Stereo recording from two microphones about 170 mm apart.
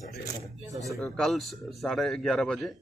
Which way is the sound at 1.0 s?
Centre (ahead or behind).